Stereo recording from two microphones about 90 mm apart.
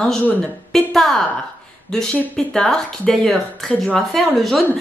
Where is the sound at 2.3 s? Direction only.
5° left (ahead or behind).